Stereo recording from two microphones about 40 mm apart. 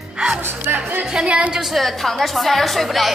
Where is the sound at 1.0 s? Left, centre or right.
Centre.